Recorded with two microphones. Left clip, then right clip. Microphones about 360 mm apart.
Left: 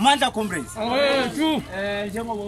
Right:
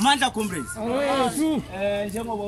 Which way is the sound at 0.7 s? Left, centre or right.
Left.